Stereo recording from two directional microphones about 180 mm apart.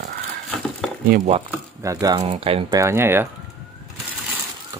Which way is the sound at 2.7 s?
15° right (ahead or behind).